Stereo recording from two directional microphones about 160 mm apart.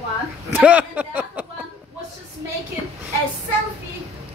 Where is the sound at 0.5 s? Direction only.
10° right (ahead or behind).